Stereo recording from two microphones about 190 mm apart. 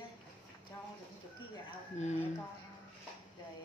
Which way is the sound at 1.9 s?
35° left (ahead or behind).